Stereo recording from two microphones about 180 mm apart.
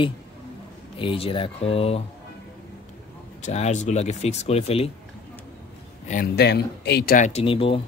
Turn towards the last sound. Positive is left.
turn(degrees=30)  # may be behind; listen again after turning